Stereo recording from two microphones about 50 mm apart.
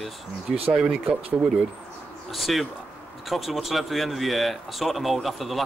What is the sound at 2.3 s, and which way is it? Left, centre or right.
Speech, centre.